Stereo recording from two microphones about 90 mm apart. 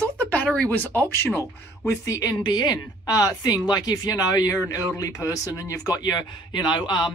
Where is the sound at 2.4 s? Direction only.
55° left (ahead or behind).